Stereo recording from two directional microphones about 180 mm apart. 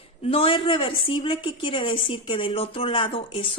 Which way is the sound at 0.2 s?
30° left (ahead or behind).